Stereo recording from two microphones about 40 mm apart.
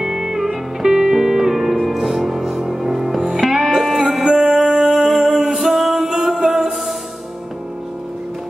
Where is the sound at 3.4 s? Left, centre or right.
Centre.